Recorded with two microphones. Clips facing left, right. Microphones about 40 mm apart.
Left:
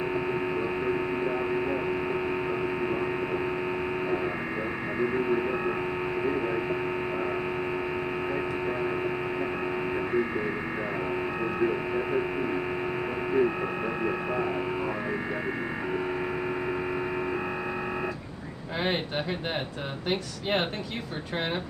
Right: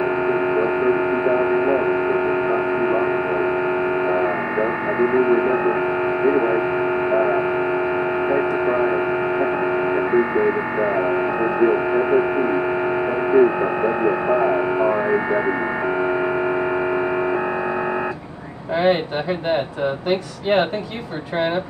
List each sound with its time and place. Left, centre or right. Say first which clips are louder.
0.3 s mains hum: right 10 dB; right
4.1 s a sound: right 9 dB; right
6.2 s hum: right 11 dB; right
8.3 s music: right 11 dB; right
10.1 s speech: right 11 dB; right
20.1 s speech: right 6 dB; centre